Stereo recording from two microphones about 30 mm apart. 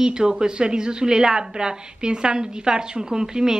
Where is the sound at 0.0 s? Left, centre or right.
Right.